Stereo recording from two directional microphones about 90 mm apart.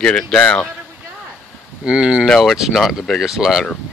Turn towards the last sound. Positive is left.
turn(degrees=-5)  # may be behind; listen again after turning